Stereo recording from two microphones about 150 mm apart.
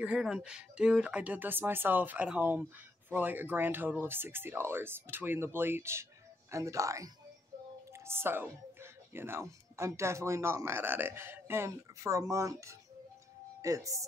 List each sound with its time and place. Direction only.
0.0 s speech: 5° right (ahead or behind); by 14.0 s 20° right (ahead or behind)